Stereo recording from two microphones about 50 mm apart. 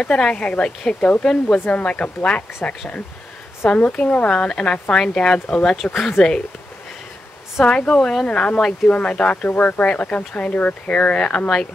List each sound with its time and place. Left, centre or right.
0.0 s speech: centre
1.7 s speech: left
3.9 s speech: left
4.4 s speech: centre
7.6 s speech: left
8.3 s speech: left